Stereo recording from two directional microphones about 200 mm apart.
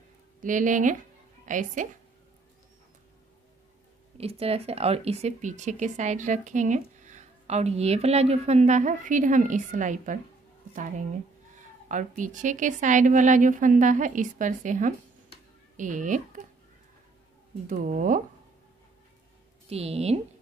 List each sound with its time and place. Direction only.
0.4 s a woman's voice: 40° right (ahead or behind)
4.2 s speech: 30° right (ahead or behind)
17.6 s speech: 40° right (ahead or behind)
19.7 s speech: 30° right (ahead or behind)